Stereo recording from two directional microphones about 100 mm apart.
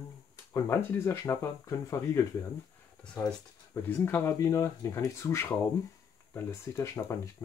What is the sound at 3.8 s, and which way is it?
Speech, 20° left (ahead or behind).